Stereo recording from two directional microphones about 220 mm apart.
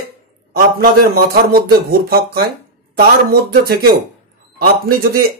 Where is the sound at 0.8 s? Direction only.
45° right (ahead or behind).